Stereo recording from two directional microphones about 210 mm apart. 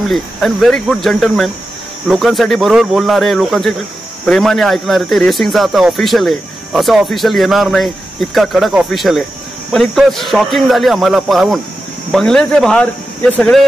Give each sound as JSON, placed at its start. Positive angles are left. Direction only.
{"t": 0.1, "sound": "speech", "side_deg": 0}